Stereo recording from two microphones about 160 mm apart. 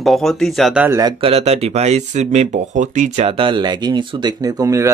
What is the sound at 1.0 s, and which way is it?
Speech, 30° right (ahead or behind).